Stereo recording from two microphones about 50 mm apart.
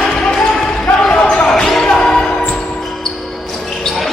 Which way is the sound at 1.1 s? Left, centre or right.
Left.